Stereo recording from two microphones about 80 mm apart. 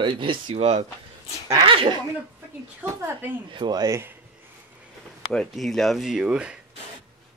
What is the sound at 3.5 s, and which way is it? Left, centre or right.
Speech, right.